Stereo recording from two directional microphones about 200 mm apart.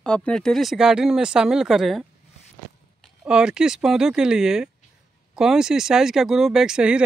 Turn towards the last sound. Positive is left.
turn(degrees=-5)  # may be behind; listen again after turning